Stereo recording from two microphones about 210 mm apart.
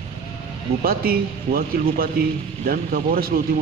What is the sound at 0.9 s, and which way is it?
A man's voice, 45° right (ahead or behind).